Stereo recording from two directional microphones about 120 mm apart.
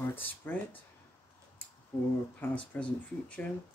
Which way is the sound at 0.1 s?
15° left (ahead or behind).